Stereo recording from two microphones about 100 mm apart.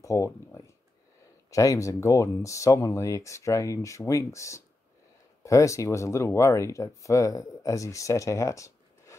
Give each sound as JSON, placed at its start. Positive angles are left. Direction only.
{"t": 0.0, "sound": "speech", "side_deg": 30}
{"t": 1.5, "sound": "speech", "side_deg": 35}